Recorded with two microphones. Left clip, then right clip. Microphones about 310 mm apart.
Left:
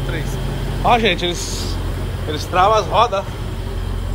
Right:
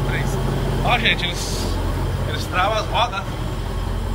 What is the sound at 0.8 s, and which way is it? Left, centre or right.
Speech, centre.